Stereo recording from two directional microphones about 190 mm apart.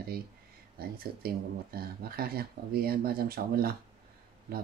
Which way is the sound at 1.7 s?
50° right (ahead or behind).